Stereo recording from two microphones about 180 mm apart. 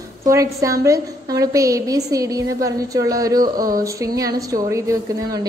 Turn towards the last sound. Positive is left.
turn(degrees=-20)  # may be behind; listen again after turning